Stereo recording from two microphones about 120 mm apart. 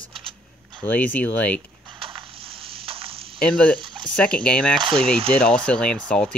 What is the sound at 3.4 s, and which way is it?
Speech, 10° left (ahead or behind).